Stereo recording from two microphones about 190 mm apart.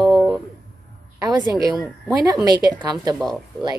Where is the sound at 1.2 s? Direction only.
20° right (ahead or behind).